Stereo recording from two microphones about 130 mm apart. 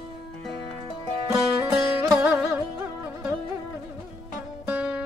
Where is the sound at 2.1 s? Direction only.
10° right (ahead or behind).